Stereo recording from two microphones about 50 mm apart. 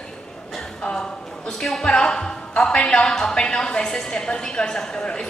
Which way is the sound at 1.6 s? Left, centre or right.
Centre.